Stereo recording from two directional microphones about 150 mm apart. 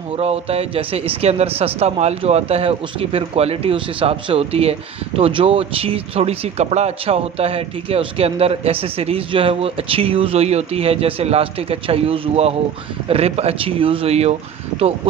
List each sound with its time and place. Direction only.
0.2 s speech: 40° right (ahead or behind)